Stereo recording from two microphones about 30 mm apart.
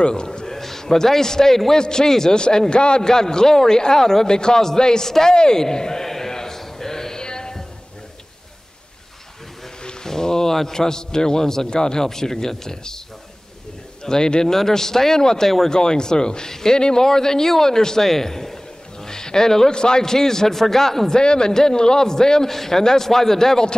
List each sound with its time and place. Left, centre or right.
0.1 s a man's voice: left
0.5 s a man's voice: centre
2.3 s a man's voice: left
3.1 s a man's voice: left
4.3 s a man's voice: left
6.0 s music: centre
10.0 s a sound: centre
10.5 s a man's voice: centre
14.0 s a man's voice: left
18.1 s a sound: centre
19.7 s speech: left; by 21.1 s centre
21.1 s a man's voice: left